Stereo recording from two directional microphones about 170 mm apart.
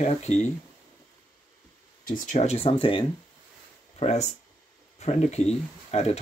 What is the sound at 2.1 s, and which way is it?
Speech, 45° left (ahead or behind).